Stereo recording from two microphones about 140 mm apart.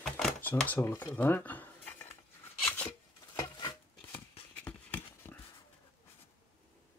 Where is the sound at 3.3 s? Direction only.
25° left (ahead or behind).